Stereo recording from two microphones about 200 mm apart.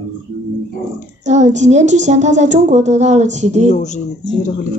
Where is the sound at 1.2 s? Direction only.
35° right (ahead or behind).